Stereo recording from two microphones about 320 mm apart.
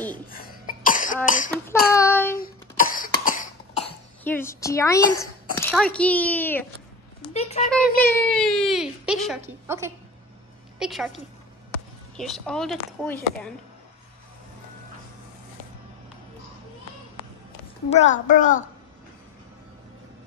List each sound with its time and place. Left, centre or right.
0.3 s cough: left
2.0 s child singing: centre
2.3 s cough: left
4.2 s speech: centre
7.3 s speech: centre
7.6 s speech: centre
12.2 s speech: centre
17.8 s a child's voice: left